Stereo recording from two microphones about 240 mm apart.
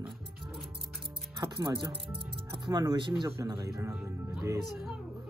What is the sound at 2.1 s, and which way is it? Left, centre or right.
Speech, centre.